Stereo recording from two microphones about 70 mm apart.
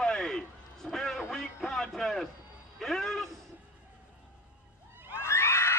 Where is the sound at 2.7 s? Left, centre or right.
Centre.